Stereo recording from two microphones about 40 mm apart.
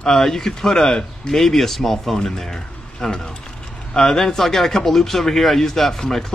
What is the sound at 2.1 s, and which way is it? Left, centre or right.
Speech, centre.